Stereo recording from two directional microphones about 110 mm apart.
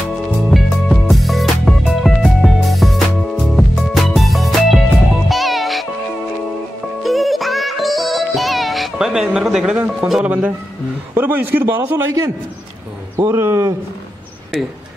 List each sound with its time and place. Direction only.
0.5 s music: centre (ahead or behind)
7.0 s music: centre (ahead or behind)
10.1 s speech: 10° right (ahead or behind)
13.2 s speech: 25° right (ahead or behind)